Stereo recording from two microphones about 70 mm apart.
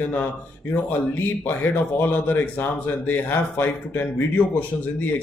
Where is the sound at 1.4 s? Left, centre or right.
Left.